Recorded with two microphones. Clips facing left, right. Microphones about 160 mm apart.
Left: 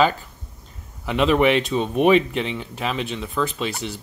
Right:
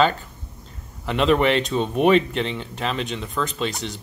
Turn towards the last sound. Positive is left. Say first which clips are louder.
# even
turn(degrees=5)  # may be behind; listen again after turning